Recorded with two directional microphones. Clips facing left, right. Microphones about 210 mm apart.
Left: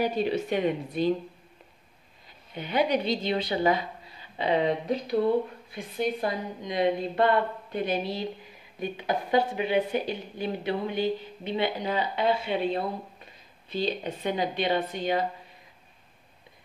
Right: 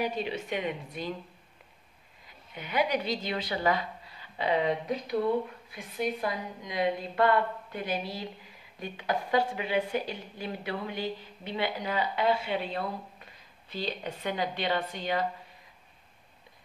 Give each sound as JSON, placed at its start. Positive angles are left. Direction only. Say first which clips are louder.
{"t": 0.0, "sound": "a woman's voice", "louder": "left 5 dB", "side_deg": 35}
{"t": 2.5, "sound": "a woman's voice", "louder": "left 3 dB", "side_deg": 30}